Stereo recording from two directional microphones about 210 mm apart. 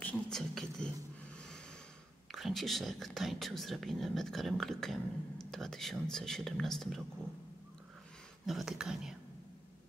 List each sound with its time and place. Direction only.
0.0 s a sound: 5° left (ahead or behind)
2.3 s speech: centre (ahead or behind)
8.5 s speech: centre (ahead or behind)